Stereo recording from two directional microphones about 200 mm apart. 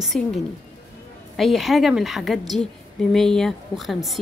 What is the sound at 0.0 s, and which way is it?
Speech, centre (ahead or behind).